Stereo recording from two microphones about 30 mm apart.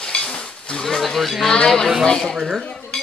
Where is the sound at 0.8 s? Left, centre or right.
Centre.